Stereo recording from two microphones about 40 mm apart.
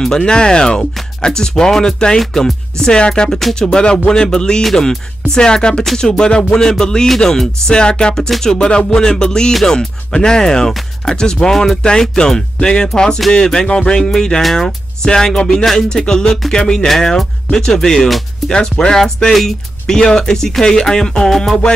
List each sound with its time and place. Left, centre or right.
0.0 s speech: centre
3.3 s music: centre
3.5 s music: centre
5.9 s speech: centre
8.3 s music: centre
9.7 s speech: centre
11.1 s music: centre
13.3 s speech: centre
18.5 s music: centre
19.3 s speech: centre